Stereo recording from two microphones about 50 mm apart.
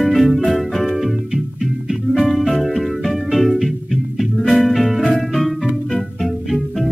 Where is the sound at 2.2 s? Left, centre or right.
Centre.